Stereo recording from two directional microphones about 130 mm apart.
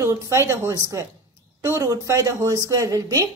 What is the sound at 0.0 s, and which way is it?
A woman's voice, 20° right (ahead or behind).